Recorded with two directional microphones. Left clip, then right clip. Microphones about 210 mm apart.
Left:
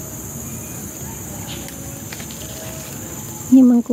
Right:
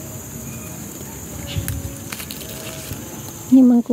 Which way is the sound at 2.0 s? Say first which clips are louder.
Right 2 dB; 35° right (ahead or behind).